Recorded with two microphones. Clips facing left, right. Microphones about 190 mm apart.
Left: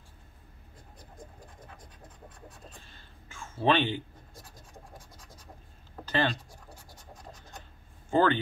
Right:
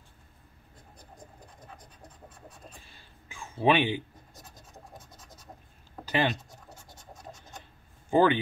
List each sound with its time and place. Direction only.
3.0 s whispering: 15° right (ahead or behind)
3.6 s speech: 10° right (ahead or behind)
6.0 s scratch: 15° right (ahead or behind)
8.1 s speech: 15° right (ahead or behind)